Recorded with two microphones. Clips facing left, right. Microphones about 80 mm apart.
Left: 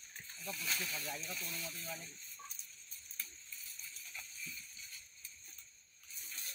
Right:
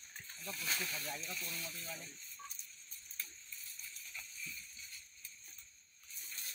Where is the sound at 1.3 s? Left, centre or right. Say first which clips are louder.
Even; centre.